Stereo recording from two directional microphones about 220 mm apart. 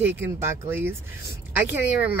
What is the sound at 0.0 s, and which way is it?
Speech, 10° right (ahead or behind).